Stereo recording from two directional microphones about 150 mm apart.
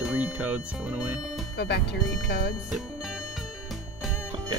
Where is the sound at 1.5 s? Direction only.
90° left.